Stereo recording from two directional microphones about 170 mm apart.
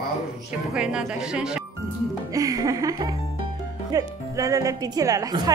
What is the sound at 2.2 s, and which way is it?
A woman's voice, 20° right (ahead or behind).